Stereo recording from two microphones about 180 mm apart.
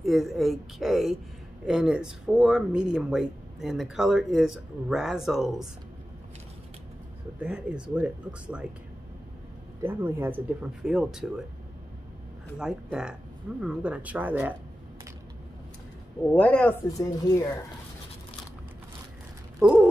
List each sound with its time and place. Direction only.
0.0 s speech: centre (ahead or behind)
7.3 s speech: 5° right (ahead or behind)
9.8 s speech: 10° right (ahead or behind)
12.5 s speech: 5° right (ahead or behind)
16.3 s a woman's voice: 10° left (ahead or behind)
16.9 s a woman's voice: 20° left (ahead or behind)
19.6 s speech: 5° right (ahead or behind)